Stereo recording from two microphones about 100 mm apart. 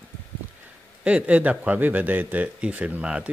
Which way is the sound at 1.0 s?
15° right (ahead or behind).